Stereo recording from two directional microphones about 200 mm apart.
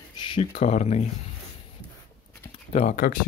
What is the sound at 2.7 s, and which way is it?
Speech, 35° left (ahead or behind).